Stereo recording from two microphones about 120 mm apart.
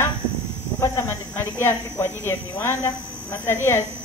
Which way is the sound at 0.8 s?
25° left (ahead or behind).